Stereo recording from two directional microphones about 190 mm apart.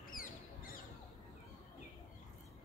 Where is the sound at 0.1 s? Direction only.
50° left (ahead or behind).